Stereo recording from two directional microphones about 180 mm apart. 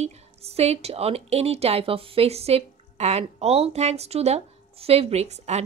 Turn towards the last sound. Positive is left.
turn(degrees=-35)  # may be behind; listen again after turning